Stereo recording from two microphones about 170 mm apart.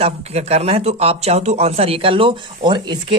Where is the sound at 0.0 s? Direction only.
40° right (ahead or behind).